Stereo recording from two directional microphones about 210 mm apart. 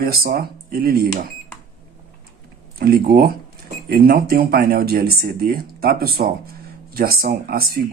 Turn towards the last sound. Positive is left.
turn(degrees=-45)  # may be behind; listen again after turning